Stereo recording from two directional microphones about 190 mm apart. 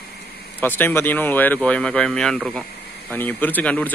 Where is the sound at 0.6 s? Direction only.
10° left (ahead or behind).